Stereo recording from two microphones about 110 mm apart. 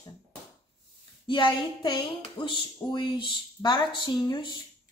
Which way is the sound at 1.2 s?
50° left (ahead or behind).